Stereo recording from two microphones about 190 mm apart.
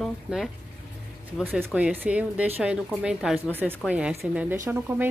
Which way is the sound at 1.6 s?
5° right (ahead or behind).